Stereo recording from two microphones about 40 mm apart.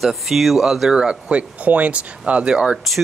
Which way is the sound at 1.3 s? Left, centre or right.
Right.